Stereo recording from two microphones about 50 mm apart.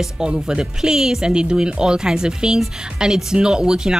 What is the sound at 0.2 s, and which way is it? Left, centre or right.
Speech, centre.